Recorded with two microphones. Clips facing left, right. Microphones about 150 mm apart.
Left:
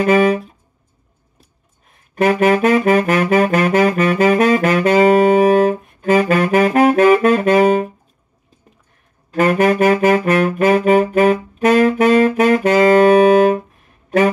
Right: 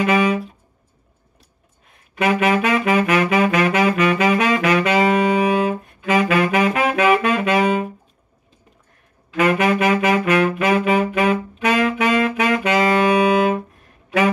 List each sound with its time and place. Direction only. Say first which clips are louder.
0.0 s saxophone: left 4 dB; 40° left (ahead or behind)
2.1 s saxophone: left 4 dB; 40° left (ahead or behind)
9.3 s saxophone: left 3 dB; 40° left (ahead or behind)